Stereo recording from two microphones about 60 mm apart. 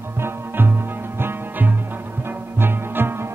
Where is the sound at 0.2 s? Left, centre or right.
Right.